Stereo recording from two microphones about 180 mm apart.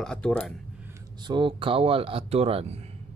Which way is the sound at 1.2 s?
25° right (ahead or behind).